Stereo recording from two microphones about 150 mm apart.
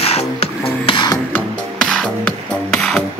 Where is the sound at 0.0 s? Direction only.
40° left (ahead or behind).